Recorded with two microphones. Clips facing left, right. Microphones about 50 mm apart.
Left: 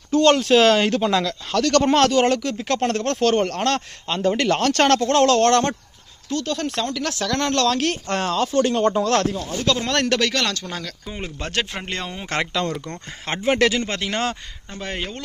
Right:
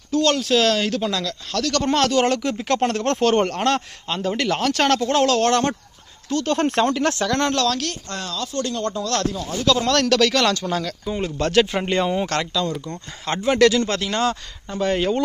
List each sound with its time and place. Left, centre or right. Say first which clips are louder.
0.1 s speech: left 3 dB; centre
2.4 s speech: right 1 dB; centre
4.1 s speech: left 3 dB; centre
6.4 s speech: right 8 dB; right
7.2 s speech: right 1 dB; centre
7.9 s speech: left 7 dB; left
9.7 s speech: right 3 dB; centre
11.1 s speech: right 7 dB; centre
11.3 s speech: right 8 dB; centre
12.8 s speech: right 1 dB; left
13.3 s speech: right 2 dB; left
14.8 s speech: right 9 dB; centre